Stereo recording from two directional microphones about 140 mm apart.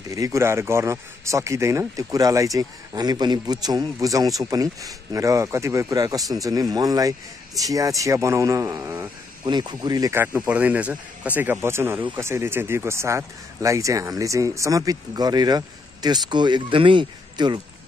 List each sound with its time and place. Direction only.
0.1 s speech: 20° right (ahead or behind)
9.4 s speech: 30° right (ahead or behind)
10.2 s speech: 10° right (ahead or behind); by 17.6 s 35° right (ahead or behind)